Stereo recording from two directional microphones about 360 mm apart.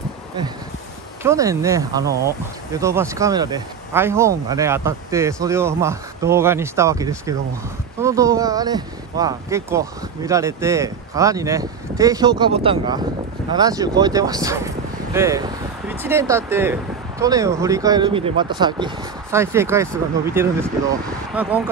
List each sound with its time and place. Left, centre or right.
1.2 s speech: centre